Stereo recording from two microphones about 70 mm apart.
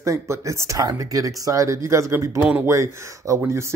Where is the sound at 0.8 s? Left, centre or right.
Right.